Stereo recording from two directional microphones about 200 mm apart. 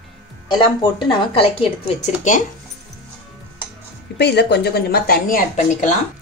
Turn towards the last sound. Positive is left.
turn(degrees=40)  # may be behind; listen again after turning